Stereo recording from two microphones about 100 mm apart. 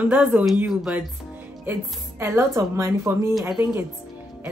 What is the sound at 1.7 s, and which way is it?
A woman's voice, 25° right (ahead or behind).